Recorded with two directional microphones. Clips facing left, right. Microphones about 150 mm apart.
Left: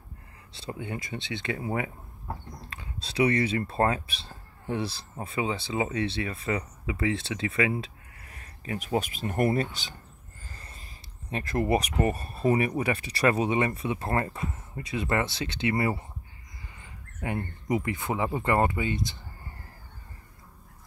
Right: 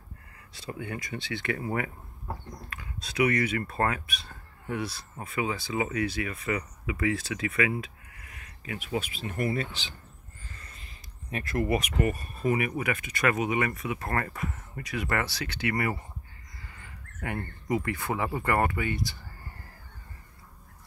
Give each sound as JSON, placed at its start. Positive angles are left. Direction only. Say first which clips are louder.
{"t": 0.5, "sound": "speech", "louder": "left 1 dB", "side_deg": 25}
{"t": 10.5, "sound": "a sound", "louder": "left 3 dB", "side_deg": 35}
{"t": 12.0, "sound": "speech", "louder": "left 2 dB", "side_deg": 35}